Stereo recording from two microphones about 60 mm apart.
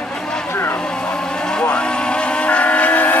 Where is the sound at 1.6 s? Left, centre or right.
Centre.